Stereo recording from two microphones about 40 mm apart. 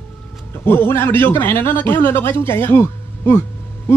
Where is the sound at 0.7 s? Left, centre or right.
Left.